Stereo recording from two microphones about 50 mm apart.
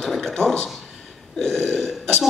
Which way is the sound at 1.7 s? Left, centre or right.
Centre.